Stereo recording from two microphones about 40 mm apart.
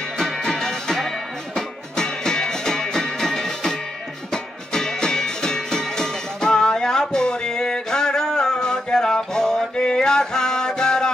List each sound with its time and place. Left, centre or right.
0.2 s music: centre